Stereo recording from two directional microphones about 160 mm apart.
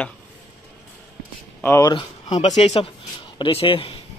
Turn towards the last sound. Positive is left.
turn(degrees=35)  # may be behind; listen again after turning